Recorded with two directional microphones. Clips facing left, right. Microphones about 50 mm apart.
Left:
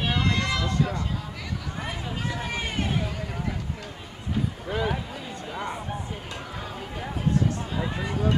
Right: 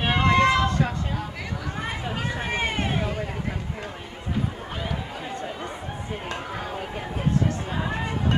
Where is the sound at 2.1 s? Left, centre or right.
Right.